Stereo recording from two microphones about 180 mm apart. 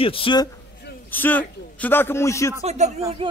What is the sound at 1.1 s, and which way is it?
A man's voice, 10° left (ahead or behind).